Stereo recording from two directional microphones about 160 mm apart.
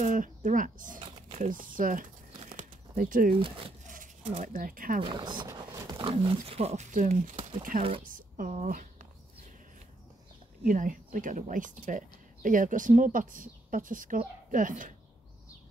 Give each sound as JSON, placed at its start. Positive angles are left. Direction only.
{"t": 0.0, "sound": "speech", "side_deg": -55}
{"t": 1.0, "sound": "a sound", "side_deg": -40}
{"t": 1.5, "sound": "speech", "side_deg": -60}
{"t": 3.3, "sound": "speech", "side_deg": -35}
{"t": 3.8, "sound": "speech", "side_deg": -55}
{"t": 5.0, "sound": "speech", "side_deg": -30}
{"t": 5.7, "sound": "dog", "side_deg": -20}
{"t": 6.4, "sound": "speech", "side_deg": -40}
{"t": 10.6, "sound": "speech", "side_deg": -55}